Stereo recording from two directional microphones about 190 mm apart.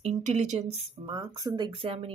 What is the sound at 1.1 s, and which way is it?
Speech, 20° right (ahead or behind).